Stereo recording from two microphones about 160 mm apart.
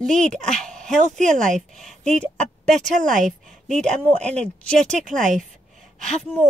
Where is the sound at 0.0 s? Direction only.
50° right (ahead or behind).